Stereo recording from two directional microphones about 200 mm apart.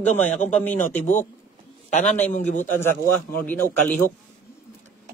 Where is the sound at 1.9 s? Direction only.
35° left (ahead or behind).